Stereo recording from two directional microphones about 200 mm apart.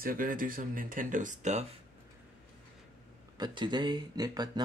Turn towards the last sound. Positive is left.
turn(degrees=-20)  # may be behind; listen again after turning